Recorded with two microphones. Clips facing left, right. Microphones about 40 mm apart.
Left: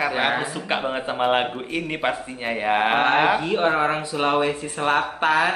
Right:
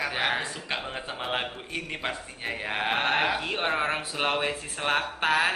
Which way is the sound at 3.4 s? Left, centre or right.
Centre.